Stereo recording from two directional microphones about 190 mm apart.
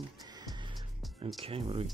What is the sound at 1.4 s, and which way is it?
Speech, 30° right (ahead or behind).